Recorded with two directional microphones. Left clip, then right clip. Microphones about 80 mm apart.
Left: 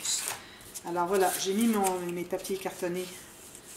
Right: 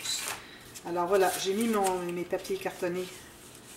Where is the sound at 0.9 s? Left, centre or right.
Centre.